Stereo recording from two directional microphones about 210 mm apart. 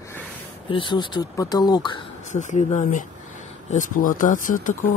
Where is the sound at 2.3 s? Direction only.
35° left (ahead or behind).